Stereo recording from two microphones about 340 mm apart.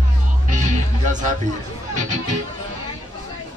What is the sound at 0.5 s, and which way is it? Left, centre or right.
Music, right.